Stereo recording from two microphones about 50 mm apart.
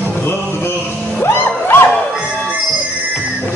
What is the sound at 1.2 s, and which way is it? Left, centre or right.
Music, left.